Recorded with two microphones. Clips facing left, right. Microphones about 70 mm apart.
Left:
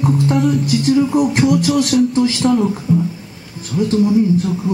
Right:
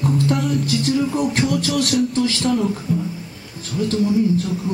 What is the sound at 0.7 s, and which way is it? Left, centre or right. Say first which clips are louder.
A man's voice: left 5 dB; centre.